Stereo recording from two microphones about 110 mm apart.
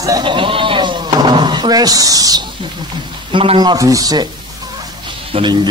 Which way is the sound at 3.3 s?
50° right (ahead or behind).